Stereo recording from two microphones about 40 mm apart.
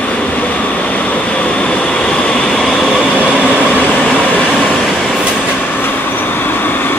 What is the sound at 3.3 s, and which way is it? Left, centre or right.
Train, left.